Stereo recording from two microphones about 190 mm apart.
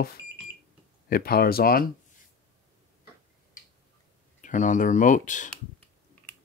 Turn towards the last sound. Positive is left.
turn(degrees=40)  # may be behind; listen again after turning